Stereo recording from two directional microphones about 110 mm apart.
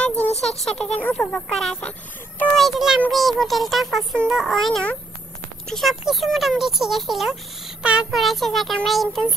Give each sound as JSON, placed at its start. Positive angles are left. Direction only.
{"t": 0.3, "sound": "speech", "side_deg": 75}
{"t": 0.9, "sound": "speech", "side_deg": 15}
{"t": 2.6, "sound": "speech", "side_deg": -5}